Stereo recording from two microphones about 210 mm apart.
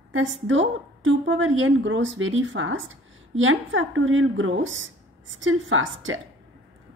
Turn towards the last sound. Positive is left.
turn(degrees=-70)  # may be behind; listen again after turning